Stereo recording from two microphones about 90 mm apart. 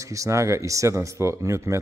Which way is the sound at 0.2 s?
35° right (ahead or behind).